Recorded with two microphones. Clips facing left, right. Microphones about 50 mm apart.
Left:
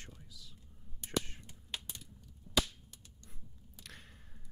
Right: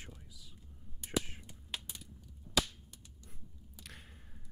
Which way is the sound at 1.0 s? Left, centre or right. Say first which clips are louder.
Right 1 dB; centre.